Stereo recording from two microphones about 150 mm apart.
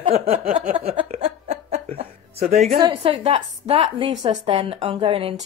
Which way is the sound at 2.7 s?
35° right (ahead or behind).